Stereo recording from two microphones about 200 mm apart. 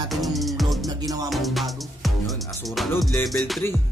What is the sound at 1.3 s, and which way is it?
Music, centre (ahead or behind).